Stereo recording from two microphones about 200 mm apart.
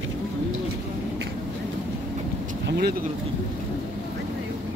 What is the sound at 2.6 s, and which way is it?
Vehicle, 55° right (ahead or behind).